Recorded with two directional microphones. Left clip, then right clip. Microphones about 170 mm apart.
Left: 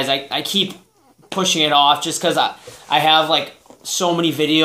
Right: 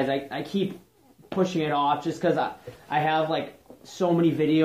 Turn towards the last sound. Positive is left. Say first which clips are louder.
# left 5 dB
turn(degrees=20)  # may be behind; listen again after turning